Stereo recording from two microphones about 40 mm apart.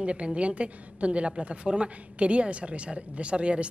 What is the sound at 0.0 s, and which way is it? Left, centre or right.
A woman's voice, right.